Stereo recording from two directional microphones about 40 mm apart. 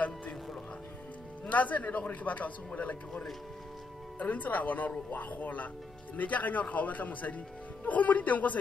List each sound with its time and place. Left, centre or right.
1.4 s speech: left
4.2 s speech: left